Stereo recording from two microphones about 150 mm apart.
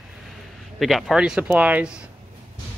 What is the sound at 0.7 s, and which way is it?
Speech, centre (ahead or behind).